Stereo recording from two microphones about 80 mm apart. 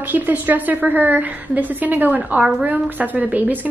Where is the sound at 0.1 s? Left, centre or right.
Right.